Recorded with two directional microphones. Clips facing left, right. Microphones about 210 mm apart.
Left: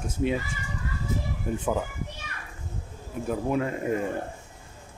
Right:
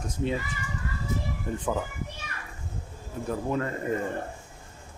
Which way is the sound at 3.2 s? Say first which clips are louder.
Left 2 dB; 10° left (ahead or behind).